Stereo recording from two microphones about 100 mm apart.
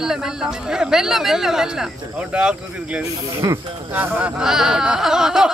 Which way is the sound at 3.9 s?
20° right (ahead or behind).